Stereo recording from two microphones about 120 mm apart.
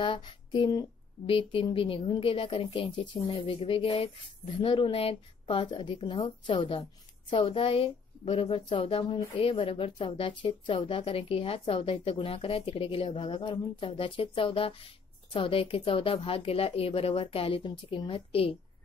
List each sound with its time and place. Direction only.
0.0 s speech: 40° left (ahead or behind)
1.2 s a woman's voice: 50° left (ahead or behind)